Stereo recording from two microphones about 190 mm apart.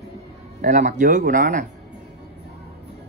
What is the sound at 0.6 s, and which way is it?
Speech, 40° right (ahead or behind).